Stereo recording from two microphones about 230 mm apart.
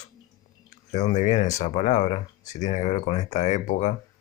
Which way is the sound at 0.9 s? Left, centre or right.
Left.